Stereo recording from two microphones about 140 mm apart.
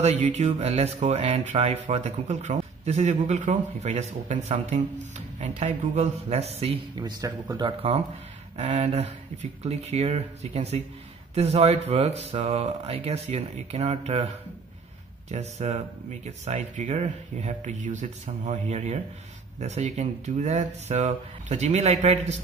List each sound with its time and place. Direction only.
0.0 s speech: 50° right (ahead or behind)
7.0 s a man's voice: 30° right (ahead or behind)
8.5 s speech: 50° right (ahead or behind)